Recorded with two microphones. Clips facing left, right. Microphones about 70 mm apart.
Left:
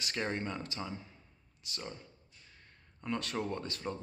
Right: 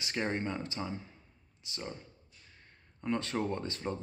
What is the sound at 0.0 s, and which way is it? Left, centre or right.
Speech, right.